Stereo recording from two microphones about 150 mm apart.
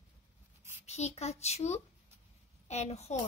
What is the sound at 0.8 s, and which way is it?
Speech, 45° left (ahead or behind).